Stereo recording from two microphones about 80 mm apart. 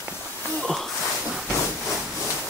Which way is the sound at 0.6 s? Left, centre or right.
Centre.